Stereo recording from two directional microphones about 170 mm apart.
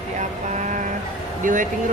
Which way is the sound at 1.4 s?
50° right (ahead or behind).